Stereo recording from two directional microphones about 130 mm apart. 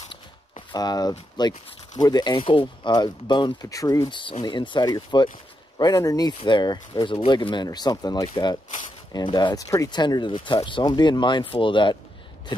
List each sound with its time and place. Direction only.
0.1 s a sound: 40° left (ahead or behind)
1.4 s speech: 35° left (ahead or behind)
4.2 s speech: 40° left (ahead or behind)